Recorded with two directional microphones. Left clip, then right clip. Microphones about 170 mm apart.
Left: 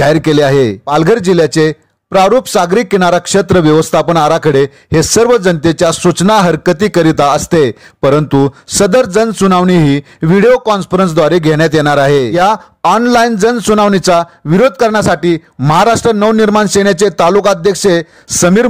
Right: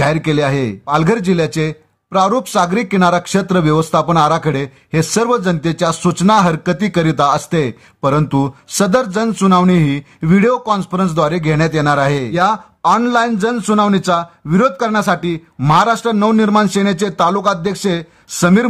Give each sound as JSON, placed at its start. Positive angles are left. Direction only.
{"t": 0.0, "sound": "a man's voice", "side_deg": 35}